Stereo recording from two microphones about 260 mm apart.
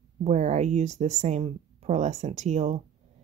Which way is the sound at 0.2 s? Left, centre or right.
Right.